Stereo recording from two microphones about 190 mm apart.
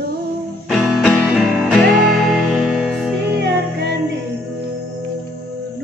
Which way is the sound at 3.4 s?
60° right (ahead or behind).